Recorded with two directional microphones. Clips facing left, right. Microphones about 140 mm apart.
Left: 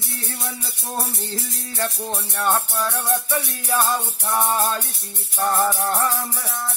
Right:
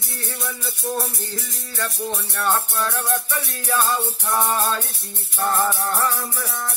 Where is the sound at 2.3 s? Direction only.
10° left (ahead or behind).